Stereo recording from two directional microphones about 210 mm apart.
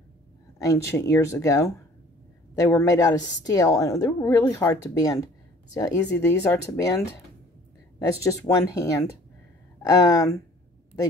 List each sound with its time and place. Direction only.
0.6 s speech: 15° left (ahead or behind)
8.2 s speech: 15° left (ahead or behind)